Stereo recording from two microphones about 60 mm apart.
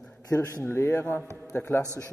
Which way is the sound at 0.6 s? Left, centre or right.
Left.